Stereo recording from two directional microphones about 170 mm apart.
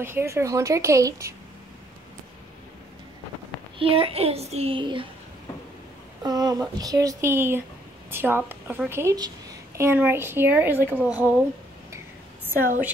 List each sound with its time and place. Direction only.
0.0 s a woman's voice: 15° right (ahead or behind)
3.7 s a child's voice: 30° right (ahead or behind)
6.2 s a woman's voice: 20° right (ahead or behind)